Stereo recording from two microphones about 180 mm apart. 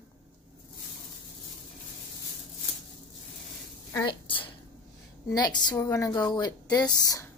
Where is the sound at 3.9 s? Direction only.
25° left (ahead or behind).